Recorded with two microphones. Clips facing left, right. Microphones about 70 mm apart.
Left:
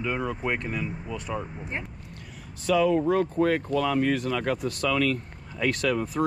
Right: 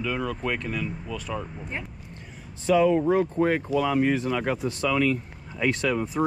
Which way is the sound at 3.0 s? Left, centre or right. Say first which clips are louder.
Right 1 dB; right.